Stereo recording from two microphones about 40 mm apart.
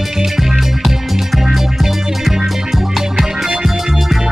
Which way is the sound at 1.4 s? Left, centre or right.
Centre.